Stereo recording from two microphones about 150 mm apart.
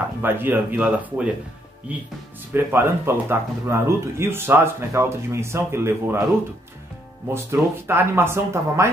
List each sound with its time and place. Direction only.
0.2 s speech: 15° right (ahead or behind)
2.5 s speech: 15° right (ahead or behind)
7.3 s speech: 15° right (ahead or behind)